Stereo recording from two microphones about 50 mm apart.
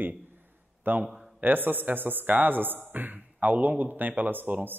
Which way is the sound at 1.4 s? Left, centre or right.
Right.